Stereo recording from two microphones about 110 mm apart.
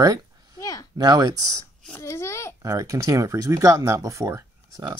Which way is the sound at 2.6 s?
30° right (ahead or behind).